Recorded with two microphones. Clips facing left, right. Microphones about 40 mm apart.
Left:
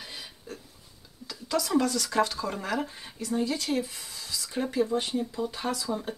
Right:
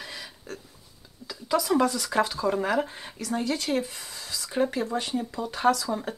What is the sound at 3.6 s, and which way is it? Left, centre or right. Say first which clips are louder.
Speech: right 2 dB; right.